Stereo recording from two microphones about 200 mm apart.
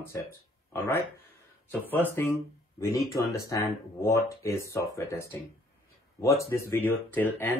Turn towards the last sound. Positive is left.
turn(degrees=10)  # may be behind; listen again after turning